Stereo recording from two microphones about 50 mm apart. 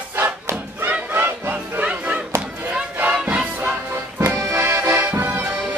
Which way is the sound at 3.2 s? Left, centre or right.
Centre.